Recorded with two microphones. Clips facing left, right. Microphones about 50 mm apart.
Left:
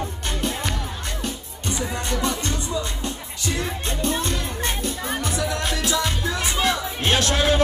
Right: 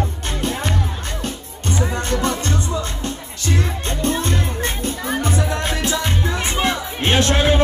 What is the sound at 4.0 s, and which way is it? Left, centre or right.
Music, right.